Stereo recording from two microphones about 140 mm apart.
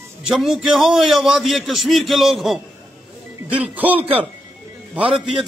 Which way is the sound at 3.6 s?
10° right (ahead or behind).